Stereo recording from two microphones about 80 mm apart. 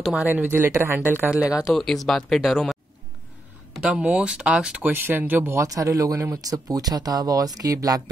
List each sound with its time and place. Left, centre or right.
0.3 s speech: right
1.3 s speech: centre
1.7 s speech: centre
3.9 s speech: centre
5.5 s speech: right